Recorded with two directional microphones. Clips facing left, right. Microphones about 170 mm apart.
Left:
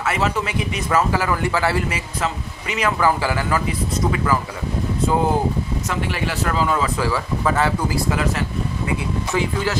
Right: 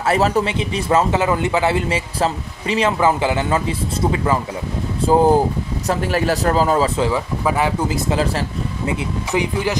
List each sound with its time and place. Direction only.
0.0 s speech: 35° right (ahead or behind)
7.0 s speech: 20° right (ahead or behind)
9.3 s speech: 15° right (ahead or behind)